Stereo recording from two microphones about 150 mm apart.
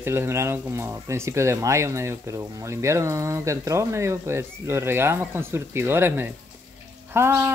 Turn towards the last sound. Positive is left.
turn(degrees=-15)  # may be behind; listen again after turning